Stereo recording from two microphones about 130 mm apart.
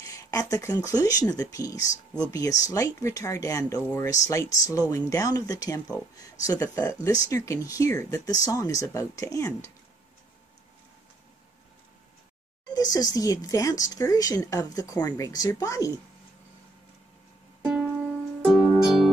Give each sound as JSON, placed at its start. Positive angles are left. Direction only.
{"t": 0.0, "sound": "speech", "side_deg": 25}
{"t": 12.7, "sound": "speech", "side_deg": 30}
{"t": 18.4, "sound": "music", "side_deg": -5}